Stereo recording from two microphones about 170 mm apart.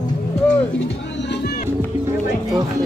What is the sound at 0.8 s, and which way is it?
Music, 80° left.